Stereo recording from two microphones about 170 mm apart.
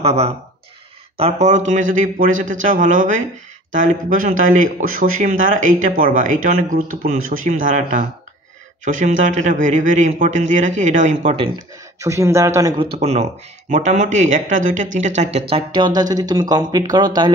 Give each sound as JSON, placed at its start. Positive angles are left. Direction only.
{"t": 0.0, "sound": "speech", "side_deg": -35}
{"t": 12.0, "sound": "speech", "side_deg": -15}
{"t": 13.0, "sound": "speech", "side_deg": -40}
{"t": 15.5, "sound": "speech", "side_deg": -25}